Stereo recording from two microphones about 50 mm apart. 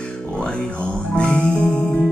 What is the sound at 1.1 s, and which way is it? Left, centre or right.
Music, left.